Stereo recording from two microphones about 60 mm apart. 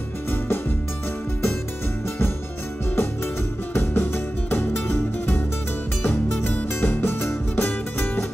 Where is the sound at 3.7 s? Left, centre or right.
Left.